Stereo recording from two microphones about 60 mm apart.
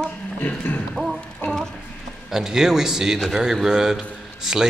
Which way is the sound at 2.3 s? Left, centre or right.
Centre.